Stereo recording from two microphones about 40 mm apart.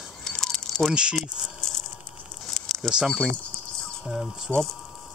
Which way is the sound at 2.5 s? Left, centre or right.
Centre.